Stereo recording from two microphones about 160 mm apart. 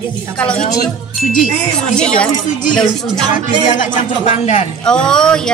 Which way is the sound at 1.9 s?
5° left (ahead or behind).